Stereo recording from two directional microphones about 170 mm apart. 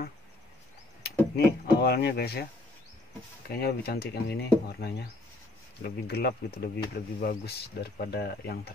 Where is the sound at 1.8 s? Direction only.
70° left (ahead or behind).